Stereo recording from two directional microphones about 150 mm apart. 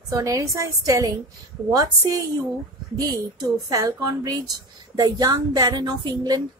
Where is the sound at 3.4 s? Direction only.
25° right (ahead or behind).